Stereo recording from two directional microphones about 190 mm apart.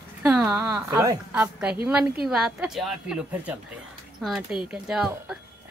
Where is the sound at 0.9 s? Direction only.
20° right (ahead or behind).